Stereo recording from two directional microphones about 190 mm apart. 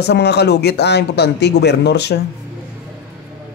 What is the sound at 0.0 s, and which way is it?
Speech, 60° left (ahead or behind).